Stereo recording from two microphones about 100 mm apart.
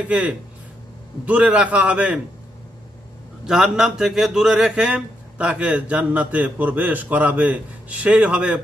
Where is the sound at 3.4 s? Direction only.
5° right (ahead or behind).